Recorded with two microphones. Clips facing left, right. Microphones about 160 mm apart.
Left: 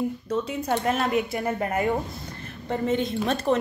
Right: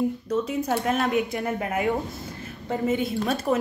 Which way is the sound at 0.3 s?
Centre (ahead or behind).